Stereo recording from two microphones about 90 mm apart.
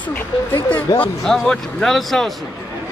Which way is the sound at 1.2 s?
5° left (ahead or behind).